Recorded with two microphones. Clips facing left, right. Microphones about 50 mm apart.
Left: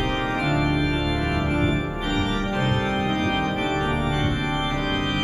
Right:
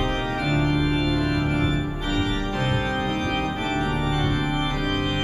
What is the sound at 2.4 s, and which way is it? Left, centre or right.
Organ, centre.